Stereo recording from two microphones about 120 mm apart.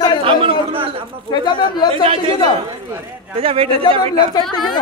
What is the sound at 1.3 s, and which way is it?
Speech, 40° left (ahead or behind).